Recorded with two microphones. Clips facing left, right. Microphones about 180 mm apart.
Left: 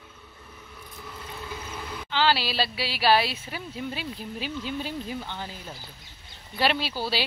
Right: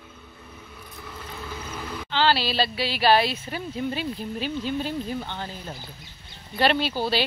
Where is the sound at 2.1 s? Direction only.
10° left (ahead or behind).